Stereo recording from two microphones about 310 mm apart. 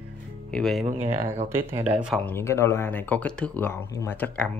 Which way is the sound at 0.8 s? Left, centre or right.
Centre.